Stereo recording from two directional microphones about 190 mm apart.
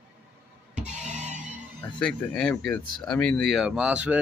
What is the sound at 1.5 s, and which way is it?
Speech, 5° left (ahead or behind).